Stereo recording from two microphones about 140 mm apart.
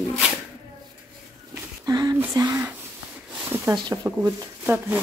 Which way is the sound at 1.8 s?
25° right (ahead or behind).